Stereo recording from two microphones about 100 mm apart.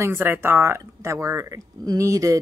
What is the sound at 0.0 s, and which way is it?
Speech, 20° right (ahead or behind).